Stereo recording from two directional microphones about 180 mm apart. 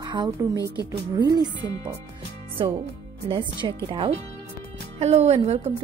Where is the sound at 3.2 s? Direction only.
25° right (ahead or behind).